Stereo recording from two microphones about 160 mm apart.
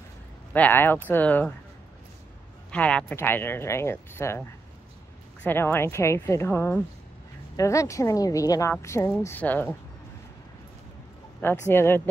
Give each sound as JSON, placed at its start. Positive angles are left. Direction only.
{"t": 0.5, "sound": "speech", "side_deg": 10}
{"t": 2.7, "sound": "speech", "side_deg": 5}
{"t": 5.4, "sound": "speech", "side_deg": 15}
{"t": 11.4, "sound": "speech", "side_deg": 15}